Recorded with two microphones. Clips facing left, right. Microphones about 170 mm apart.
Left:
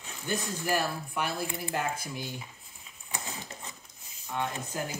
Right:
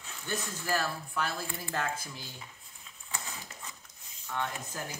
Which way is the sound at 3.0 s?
20° left (ahead or behind).